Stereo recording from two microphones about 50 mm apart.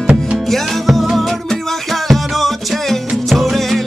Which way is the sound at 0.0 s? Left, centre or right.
Centre.